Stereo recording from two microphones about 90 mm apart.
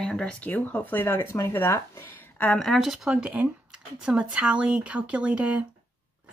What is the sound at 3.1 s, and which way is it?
Speech, 10° right (ahead or behind).